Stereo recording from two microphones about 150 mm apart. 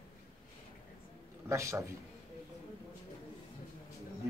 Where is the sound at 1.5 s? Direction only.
20° right (ahead or behind).